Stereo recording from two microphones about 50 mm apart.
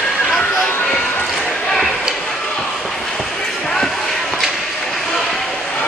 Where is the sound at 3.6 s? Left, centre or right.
Centre.